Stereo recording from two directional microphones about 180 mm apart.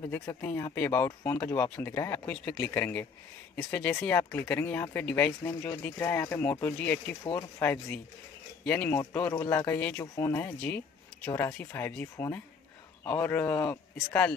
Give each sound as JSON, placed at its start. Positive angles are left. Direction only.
{"t": 0.1, "sound": "speech", "side_deg": 15}
{"t": 13.3, "sound": "speech", "side_deg": 10}